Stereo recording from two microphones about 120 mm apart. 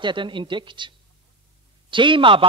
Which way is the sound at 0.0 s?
40° right (ahead or behind).